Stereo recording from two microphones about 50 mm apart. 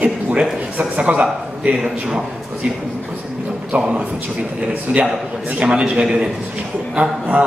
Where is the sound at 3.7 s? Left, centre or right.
Right.